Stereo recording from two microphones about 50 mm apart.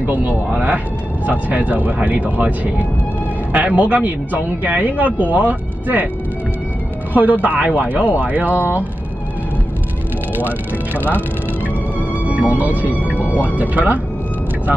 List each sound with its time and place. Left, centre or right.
0.0 s speech: right
7.2 s speech: right
11.0 s speech: right
12.3 s speech: right